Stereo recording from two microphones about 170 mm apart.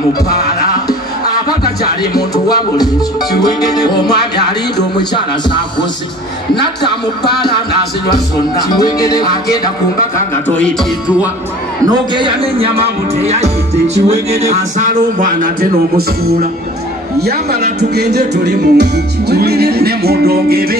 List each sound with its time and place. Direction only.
2.1 s music: 20° left (ahead or behind)
3.8 s music: 75° left (ahead or behind)
6.5 s music: 70° left (ahead or behind)
8.6 s music: 25° left (ahead or behind)
11.8 s speech: 30° right (ahead or behind); by 15.3 s 50° right (ahead or behind)
17.7 s music: 75° right (ahead or behind)